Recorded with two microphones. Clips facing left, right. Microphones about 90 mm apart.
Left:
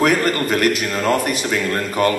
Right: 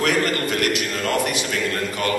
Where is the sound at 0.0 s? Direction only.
40° left (ahead or behind).